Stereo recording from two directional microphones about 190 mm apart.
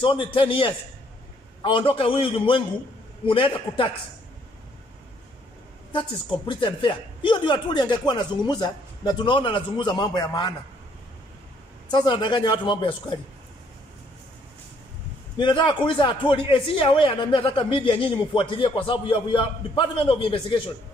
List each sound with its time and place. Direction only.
0.0 s a man's voice: 25° left (ahead or behind)
5.9 s a man's voice: 25° left (ahead or behind)
11.9 s a man's voice: 25° left (ahead or behind)
15.3 s a man's voice: 25° left (ahead or behind)